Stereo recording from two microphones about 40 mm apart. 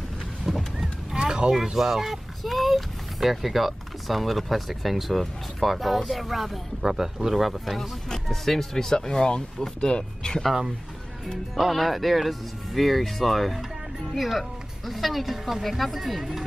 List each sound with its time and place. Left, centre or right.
0.7 s a sound: centre
1.5 s speech: centre
11.5 s speech: centre